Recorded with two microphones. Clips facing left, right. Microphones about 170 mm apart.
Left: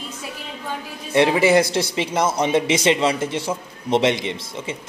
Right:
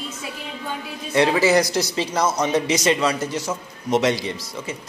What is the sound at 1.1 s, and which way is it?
Speech, 25° left (ahead or behind).